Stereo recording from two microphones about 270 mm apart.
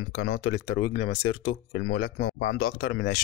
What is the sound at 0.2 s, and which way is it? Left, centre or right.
Speech, left.